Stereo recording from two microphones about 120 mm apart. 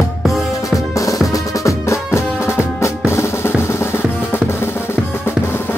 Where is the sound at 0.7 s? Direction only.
30° left (ahead or behind).